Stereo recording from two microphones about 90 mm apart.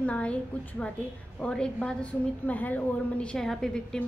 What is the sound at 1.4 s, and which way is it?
A woman's voice, 10° left (ahead or behind).